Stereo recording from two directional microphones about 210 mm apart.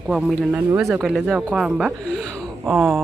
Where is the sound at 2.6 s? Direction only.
10° right (ahead or behind).